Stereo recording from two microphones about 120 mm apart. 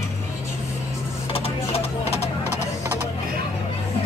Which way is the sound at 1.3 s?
55° left (ahead or behind).